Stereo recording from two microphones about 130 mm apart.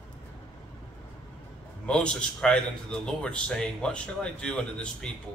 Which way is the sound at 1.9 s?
5° left (ahead or behind).